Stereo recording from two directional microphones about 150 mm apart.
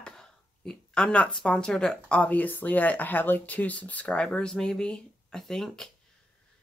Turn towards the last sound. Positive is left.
turn(degrees=5)  # may be behind; listen again after turning